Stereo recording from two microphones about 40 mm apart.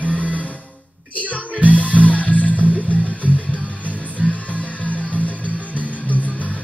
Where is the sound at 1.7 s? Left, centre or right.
Left.